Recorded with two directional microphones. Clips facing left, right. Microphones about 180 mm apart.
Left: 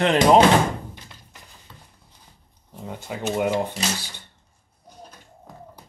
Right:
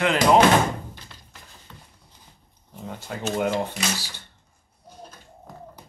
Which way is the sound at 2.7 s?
5° left (ahead or behind).